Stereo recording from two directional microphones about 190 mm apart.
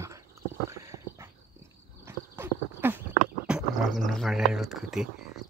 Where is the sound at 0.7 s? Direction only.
15° right (ahead or behind).